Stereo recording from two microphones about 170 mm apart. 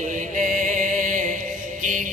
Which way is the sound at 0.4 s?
50° right (ahead or behind).